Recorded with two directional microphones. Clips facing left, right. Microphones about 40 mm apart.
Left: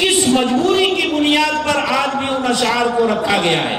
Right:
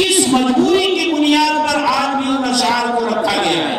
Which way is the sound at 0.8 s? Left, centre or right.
Left.